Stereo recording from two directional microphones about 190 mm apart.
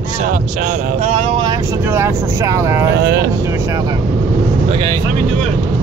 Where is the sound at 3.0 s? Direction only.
60° right (ahead or behind).